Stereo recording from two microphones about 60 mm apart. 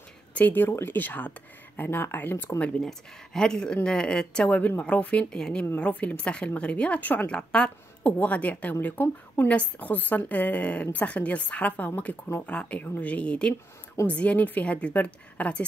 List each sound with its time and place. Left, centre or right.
0.3 s a sound: left
0.6 s speech: left
2.8 s speech: centre
4.6 s speech: left
7.2 s speech: centre
8.8 s speech: left
9.5 s speech: left